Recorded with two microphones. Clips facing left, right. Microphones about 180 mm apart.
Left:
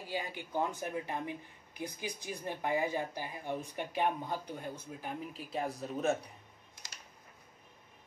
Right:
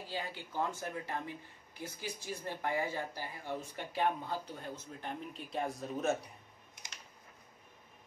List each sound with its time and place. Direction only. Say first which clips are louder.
0.0 s speech: left 2 dB; 15° left (ahead or behind)